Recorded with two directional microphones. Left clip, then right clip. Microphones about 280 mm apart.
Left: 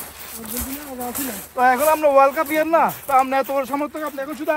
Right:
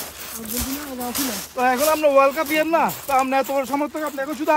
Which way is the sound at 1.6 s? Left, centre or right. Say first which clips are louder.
Left 2 dB; centre.